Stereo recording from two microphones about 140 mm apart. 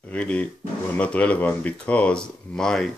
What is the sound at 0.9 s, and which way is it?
Speech, 10° left (ahead or behind).